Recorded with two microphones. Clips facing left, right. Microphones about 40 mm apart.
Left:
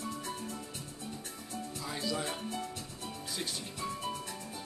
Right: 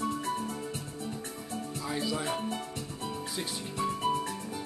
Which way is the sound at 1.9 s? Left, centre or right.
Centre.